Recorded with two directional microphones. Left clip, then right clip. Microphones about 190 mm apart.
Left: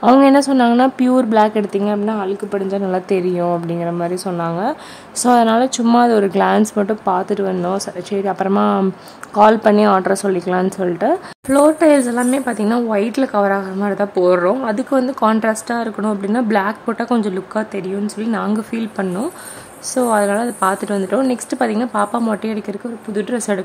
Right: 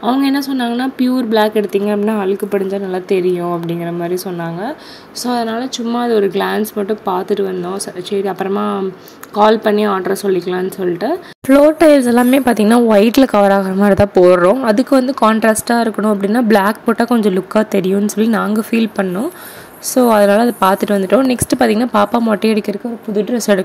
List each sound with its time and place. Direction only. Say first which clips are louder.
0.2 s a woman's voice: left 5 dB; 5° left (ahead or behind); by 2.8 s 10° right (ahead or behind)
2.9 s a woman's voice: right 3 dB; centre (ahead or behind)
5.2 s speech: left 6 dB; 15° left (ahead or behind)
6.1 s a woman's voice: even; centre (ahead or behind)
11.4 s a woman's voice: right 4 dB; 20° right (ahead or behind)